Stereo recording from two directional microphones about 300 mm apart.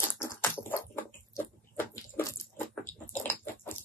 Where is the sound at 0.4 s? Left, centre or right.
Centre.